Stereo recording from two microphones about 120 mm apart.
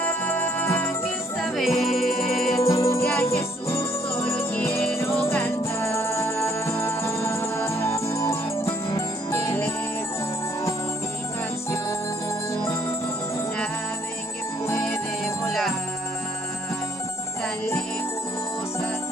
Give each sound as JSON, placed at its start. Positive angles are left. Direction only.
{"t": 0.0, "sound": "music", "side_deg": 15}
{"t": 1.4, "sound": "music", "side_deg": 0}
{"t": 2.5, "sound": "music", "side_deg": 25}
{"t": 15.4, "sound": "music", "side_deg": 0}